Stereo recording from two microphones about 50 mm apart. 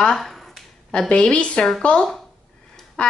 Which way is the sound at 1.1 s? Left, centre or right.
Left.